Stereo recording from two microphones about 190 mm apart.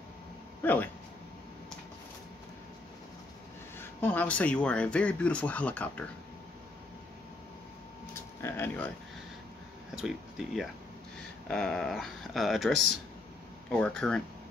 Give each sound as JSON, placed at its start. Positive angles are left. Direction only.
{"t": 0.6, "sound": "speech", "side_deg": 10}
{"t": 3.7, "sound": "speech", "side_deg": 10}
{"t": 8.4, "sound": "a sound", "side_deg": 15}
{"t": 9.9, "sound": "speech", "side_deg": 0}